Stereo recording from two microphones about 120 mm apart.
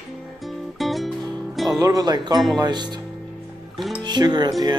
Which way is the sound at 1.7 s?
30° right (ahead or behind).